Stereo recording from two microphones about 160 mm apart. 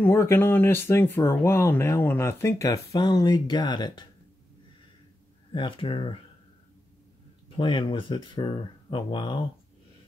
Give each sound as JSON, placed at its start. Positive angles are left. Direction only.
{"t": 0.0, "sound": "speech", "side_deg": 15}
{"t": 5.5, "sound": "speech", "side_deg": 30}
{"t": 7.4, "sound": "speech", "side_deg": 30}